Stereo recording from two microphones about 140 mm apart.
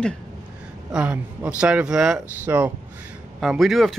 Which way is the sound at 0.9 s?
5° right (ahead or behind).